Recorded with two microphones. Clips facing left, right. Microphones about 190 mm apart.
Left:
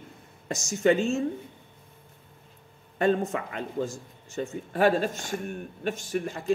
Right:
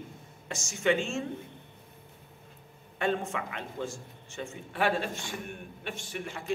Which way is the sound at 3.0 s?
40° left (ahead or behind).